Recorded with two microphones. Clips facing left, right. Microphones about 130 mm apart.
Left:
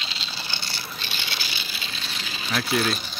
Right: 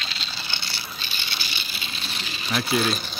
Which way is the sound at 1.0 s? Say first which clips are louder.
Left 1 dB; 90° left.